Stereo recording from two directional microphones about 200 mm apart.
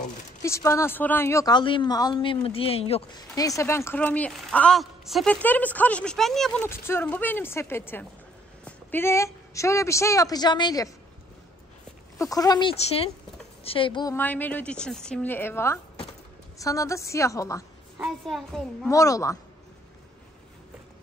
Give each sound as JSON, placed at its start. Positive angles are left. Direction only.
{"t": 0.4, "sound": "a woman's voice", "side_deg": 15}
{"t": 3.3, "sound": "a woman's voice", "side_deg": 15}
{"t": 6.6, "sound": "a woman's voice", "side_deg": 10}
{"t": 12.2, "sound": "a woman's voice", "side_deg": 15}
{"t": 14.1, "sound": "a woman's voice", "side_deg": 10}
{"t": 17.9, "sound": "a woman's voice", "side_deg": 0}
{"t": 18.9, "sound": "a woman's voice", "side_deg": 15}